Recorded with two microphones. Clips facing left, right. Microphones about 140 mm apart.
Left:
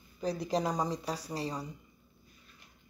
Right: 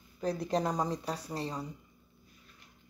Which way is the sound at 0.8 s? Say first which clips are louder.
Even; 5° right (ahead or behind).